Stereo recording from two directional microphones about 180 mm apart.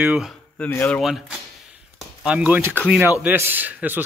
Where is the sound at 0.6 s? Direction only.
10° left (ahead or behind).